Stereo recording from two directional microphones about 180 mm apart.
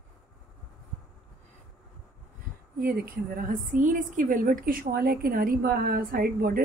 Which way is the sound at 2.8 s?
55° right (ahead or behind).